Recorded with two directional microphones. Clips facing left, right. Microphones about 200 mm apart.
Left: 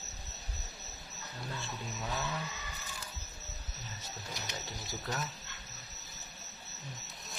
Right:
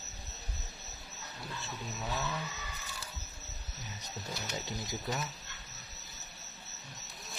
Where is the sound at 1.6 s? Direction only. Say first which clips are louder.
Even; centre (ahead or behind).